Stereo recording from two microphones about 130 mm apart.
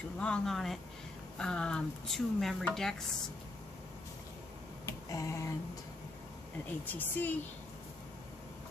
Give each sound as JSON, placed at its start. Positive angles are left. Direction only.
{"t": 0.2, "sound": "speech", "side_deg": 5}
{"t": 4.8, "sound": "a sound", "side_deg": 25}
{"t": 6.8, "sound": "speech", "side_deg": 15}